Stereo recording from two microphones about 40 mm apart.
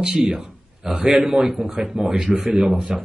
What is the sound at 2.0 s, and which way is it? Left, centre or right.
Speech, right.